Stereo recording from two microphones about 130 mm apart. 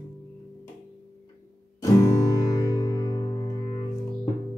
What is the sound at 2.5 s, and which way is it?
Music, 30° left (ahead or behind).